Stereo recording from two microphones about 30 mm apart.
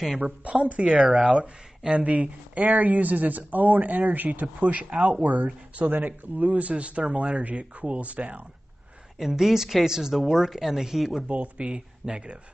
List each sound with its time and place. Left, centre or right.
0.4 s speech: right
1.9 s speech: right
6.7 s speech: right
9.3 s speech: centre
11.2 s speech: right
12.1 s speech: right